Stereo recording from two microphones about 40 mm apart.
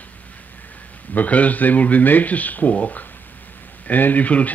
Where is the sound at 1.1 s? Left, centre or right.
Left.